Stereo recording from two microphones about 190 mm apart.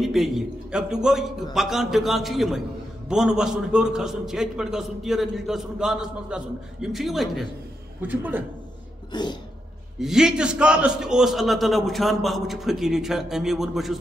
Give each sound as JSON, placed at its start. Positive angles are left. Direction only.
{"t": 0.0, "sound": "a man's voice", "side_deg": 0}
{"t": 9.1, "sound": "throat clearing", "side_deg": 25}
{"t": 9.9, "sound": "a man's voice", "side_deg": 0}